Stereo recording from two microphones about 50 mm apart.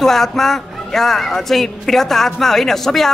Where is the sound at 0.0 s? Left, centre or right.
Centre.